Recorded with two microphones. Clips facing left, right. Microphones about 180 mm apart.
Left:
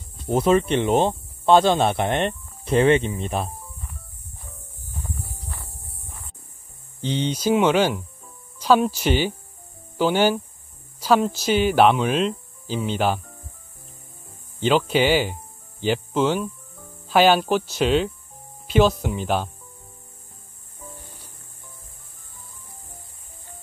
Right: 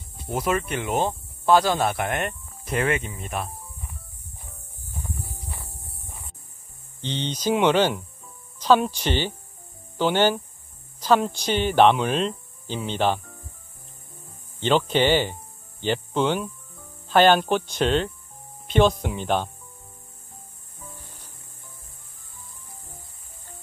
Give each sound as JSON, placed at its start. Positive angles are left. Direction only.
{"t": 0.3, "sound": "speech", "side_deg": 30}
{"t": 7.0, "sound": "speech", "side_deg": 10}
{"t": 14.6, "sound": "speech", "side_deg": 5}